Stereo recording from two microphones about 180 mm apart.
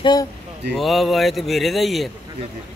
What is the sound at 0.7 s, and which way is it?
Speech, centre (ahead or behind).